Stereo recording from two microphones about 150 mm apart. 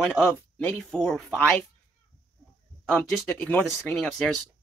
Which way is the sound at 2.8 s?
5° left (ahead or behind).